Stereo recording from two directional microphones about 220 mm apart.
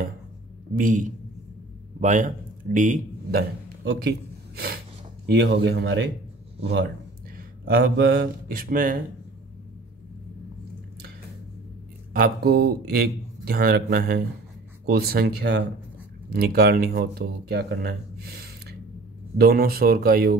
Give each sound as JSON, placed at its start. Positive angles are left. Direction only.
{"t": 0.7, "sound": "a man's voice", "side_deg": -35}
{"t": 5.2, "sound": "speech", "side_deg": -50}
{"t": 12.1, "sound": "speech", "side_deg": -45}